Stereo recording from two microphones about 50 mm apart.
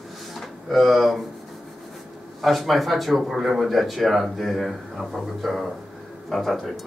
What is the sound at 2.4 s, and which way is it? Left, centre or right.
Speech, centre.